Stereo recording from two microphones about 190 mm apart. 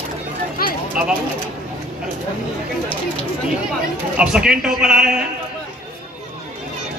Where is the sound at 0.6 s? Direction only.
50° left (ahead or behind).